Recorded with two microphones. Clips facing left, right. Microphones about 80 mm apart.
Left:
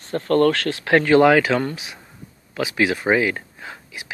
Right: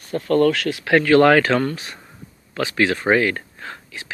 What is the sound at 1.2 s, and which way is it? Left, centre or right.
Speech, centre.